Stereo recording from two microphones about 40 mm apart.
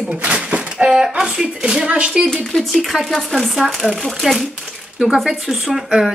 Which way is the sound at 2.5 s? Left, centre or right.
Centre.